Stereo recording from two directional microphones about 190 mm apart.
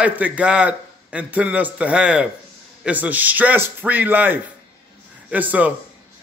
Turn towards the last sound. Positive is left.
turn(degrees=-10)  # may be behind; listen again after turning